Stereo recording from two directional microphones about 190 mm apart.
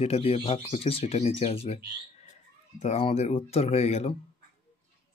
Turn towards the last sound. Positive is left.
turn(degrees=35)  # may be behind; listen again after turning